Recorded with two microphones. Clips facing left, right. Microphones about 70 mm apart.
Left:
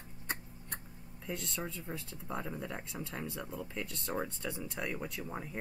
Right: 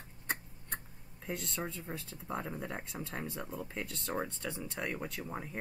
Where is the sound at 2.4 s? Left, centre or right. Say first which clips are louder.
Even; centre.